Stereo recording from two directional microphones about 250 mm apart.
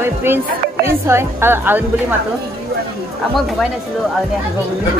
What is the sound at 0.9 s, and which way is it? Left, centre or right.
Speech, centre.